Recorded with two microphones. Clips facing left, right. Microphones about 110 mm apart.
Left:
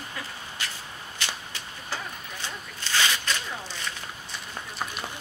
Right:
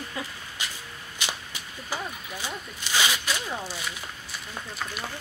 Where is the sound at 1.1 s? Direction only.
15° right (ahead or behind).